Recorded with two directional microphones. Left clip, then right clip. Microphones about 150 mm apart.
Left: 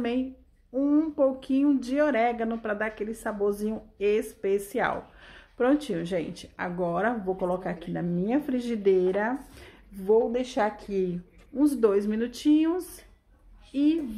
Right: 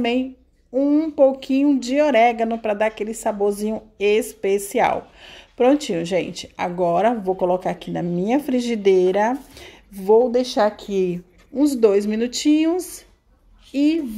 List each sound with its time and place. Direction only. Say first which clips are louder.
0.7 s a woman's voice: right 7 dB; 25° right (ahead or behind)
10.5 s a woman's voice: right 8 dB; 85° right
11.5 s a woman's voice: right 7 dB; 25° right (ahead or behind)